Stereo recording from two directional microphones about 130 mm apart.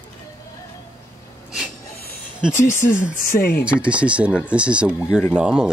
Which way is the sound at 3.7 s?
10° right (ahead or behind).